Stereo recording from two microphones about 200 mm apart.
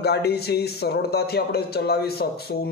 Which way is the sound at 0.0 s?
55° left (ahead or behind).